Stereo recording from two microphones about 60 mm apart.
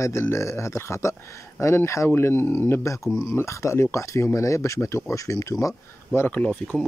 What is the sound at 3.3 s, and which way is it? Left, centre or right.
Speech, left.